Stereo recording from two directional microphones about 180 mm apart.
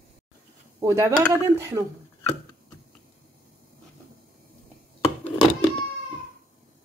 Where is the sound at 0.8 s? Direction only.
15° right (ahead or behind).